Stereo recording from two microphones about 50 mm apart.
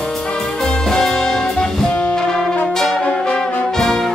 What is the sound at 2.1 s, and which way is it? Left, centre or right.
Brass instrument, centre.